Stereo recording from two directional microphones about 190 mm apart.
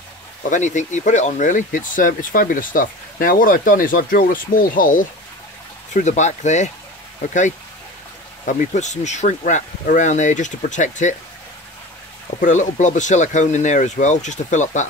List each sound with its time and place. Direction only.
0.5 s speech: 40° left (ahead or behind)
12.4 s speech: 40° left (ahead or behind)